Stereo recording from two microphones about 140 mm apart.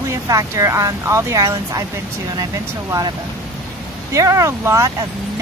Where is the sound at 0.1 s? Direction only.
20° right (ahead or behind).